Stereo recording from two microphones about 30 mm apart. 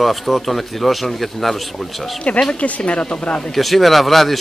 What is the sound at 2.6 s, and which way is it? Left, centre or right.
Speech, left.